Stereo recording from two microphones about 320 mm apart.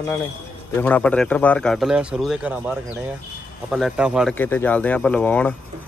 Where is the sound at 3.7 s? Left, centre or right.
Centre.